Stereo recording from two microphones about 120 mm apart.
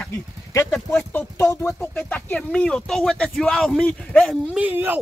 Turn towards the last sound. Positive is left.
turn(degrees=-15)  # may be behind; listen again after turning